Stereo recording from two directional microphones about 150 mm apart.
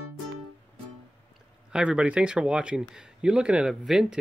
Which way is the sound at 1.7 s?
10° right (ahead or behind).